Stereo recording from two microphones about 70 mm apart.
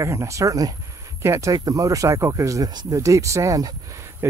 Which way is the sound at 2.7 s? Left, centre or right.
Right.